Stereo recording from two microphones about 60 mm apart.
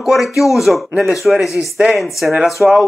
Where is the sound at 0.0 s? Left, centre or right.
Centre.